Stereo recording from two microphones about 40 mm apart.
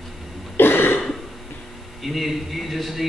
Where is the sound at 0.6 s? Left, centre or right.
Left.